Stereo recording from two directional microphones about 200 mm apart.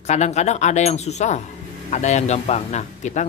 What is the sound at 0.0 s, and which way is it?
A man's voice, 35° left (ahead or behind).